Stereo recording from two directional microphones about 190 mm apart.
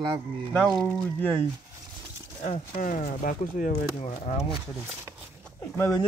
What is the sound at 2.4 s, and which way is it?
Speech, 40° left (ahead or behind).